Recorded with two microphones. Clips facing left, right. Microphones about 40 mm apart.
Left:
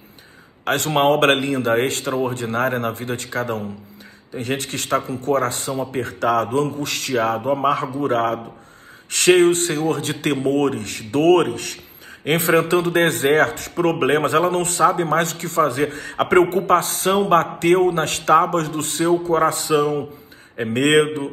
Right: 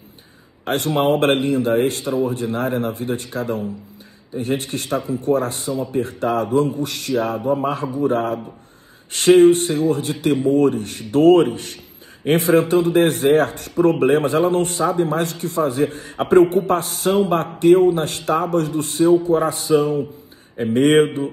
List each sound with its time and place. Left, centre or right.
0.7 s speech: left